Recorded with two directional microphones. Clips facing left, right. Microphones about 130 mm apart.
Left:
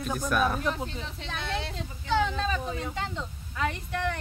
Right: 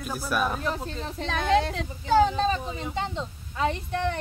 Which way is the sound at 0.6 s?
35° right (ahead or behind).